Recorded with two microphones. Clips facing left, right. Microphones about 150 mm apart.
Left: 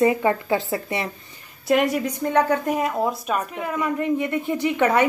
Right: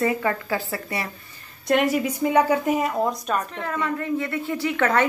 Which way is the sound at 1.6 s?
Centre (ahead or behind).